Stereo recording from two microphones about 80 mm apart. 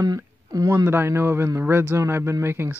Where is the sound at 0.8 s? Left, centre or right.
Right.